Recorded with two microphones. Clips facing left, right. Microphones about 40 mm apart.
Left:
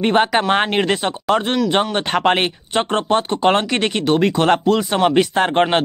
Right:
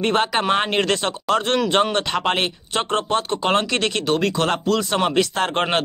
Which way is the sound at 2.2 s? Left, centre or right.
Left.